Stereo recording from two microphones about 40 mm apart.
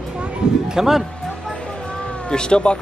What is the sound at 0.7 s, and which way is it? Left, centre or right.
Speech, centre.